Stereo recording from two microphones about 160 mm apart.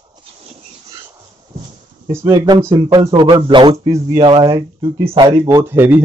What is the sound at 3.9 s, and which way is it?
Speech, 20° right (ahead or behind).